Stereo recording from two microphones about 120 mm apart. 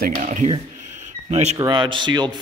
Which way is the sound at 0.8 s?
90° right.